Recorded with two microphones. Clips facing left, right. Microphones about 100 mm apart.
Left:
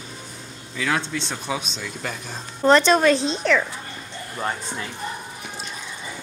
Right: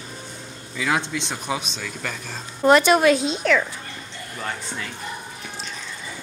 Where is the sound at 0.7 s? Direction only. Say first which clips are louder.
Right 1 dB; 10° right (ahead or behind).